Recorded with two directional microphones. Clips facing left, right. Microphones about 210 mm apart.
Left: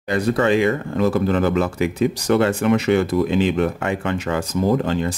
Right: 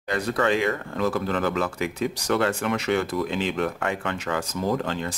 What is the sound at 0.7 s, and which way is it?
Speech, 20° left (ahead or behind).